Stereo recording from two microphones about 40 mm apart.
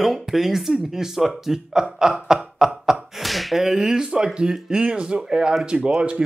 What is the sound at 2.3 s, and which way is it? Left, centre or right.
Beatboxing, centre.